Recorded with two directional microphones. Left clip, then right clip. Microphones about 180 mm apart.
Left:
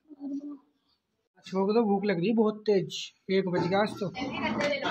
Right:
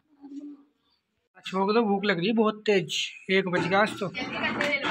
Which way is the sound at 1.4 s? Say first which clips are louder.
Right 2 dB; 5° left (ahead or behind).